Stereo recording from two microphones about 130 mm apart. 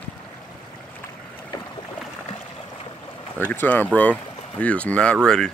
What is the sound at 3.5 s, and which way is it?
Speech, 15° left (ahead or behind).